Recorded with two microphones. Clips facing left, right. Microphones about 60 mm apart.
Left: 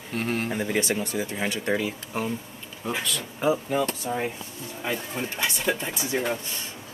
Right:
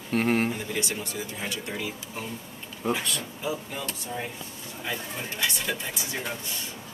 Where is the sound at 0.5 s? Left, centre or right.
Left.